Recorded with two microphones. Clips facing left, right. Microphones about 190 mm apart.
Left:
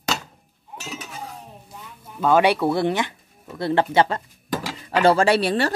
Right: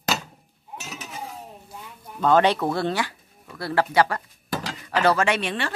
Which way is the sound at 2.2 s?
10° left (ahead or behind).